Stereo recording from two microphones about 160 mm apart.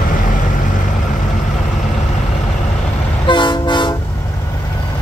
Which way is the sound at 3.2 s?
30° left (ahead or behind).